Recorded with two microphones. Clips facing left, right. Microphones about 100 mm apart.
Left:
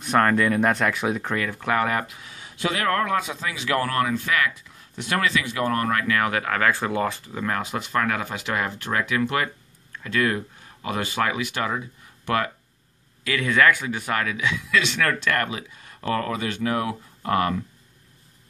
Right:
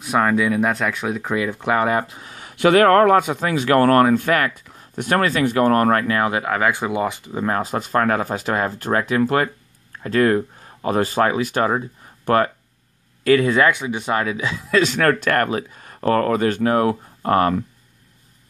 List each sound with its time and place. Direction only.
0.0 s speech: 5° right (ahead or behind)
1.3 s speech: 15° right (ahead or behind); by 2.3 s 35° right (ahead or behind)
2.3 s speech: 60° right (ahead or behind); by 6.1 s 40° right (ahead or behind)
6.1 s speech: 25° right (ahead or behind)
7.4 s speech: 35° right (ahead or behind)